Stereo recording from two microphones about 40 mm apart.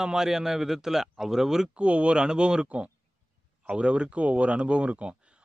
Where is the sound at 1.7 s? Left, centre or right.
Right.